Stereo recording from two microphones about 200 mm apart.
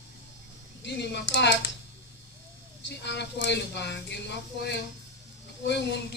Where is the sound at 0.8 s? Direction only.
60° left (ahead or behind).